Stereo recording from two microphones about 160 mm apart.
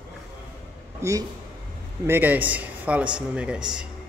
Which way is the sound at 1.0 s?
20° right (ahead or behind).